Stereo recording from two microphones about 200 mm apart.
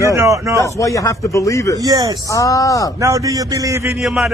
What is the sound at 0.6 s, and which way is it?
A man's voice, 15° left (ahead or behind).